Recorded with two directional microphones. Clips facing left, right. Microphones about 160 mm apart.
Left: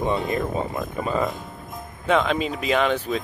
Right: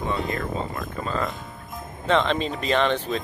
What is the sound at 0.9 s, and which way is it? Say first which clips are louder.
Speech: left 4 dB; 15° left (ahead or behind).